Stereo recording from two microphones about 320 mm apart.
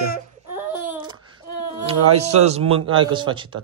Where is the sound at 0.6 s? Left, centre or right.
Centre.